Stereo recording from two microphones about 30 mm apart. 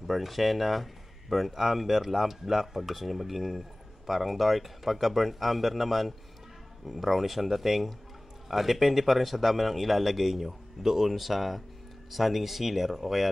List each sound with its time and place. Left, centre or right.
0.0 s speech: centre